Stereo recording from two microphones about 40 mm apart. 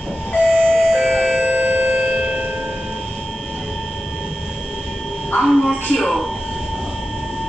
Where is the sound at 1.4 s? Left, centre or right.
Right.